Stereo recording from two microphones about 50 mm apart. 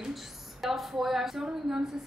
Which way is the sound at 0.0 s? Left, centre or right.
Centre.